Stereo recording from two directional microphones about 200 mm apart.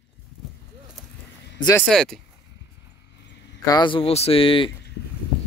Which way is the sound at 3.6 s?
20° left (ahead or behind).